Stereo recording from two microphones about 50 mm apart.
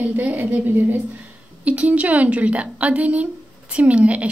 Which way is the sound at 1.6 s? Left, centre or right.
Right.